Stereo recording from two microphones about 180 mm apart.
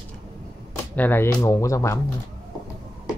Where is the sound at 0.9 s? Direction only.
10° left (ahead or behind).